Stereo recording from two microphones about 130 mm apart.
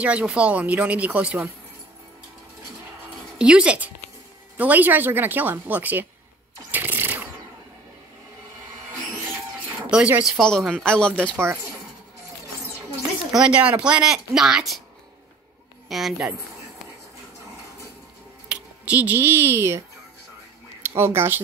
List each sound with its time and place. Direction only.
0.0 s speech: 10° right (ahead or behind)
3.3 s speech: 5° right (ahead or behind)
6.7 s a sound: 15° right (ahead or behind)
9.8 s speech: 10° right (ahead or behind)
10.9 s speech: 5° left (ahead or behind)
13.3 s speech: 5° right (ahead or behind)
15.9 s speech: centre (ahead or behind)
18.5 s speech: 10° right (ahead or behind)
20.8 s speech: 20° right (ahead or behind)